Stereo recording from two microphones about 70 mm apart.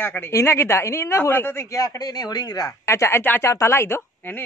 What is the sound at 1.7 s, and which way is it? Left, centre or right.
Speech, left.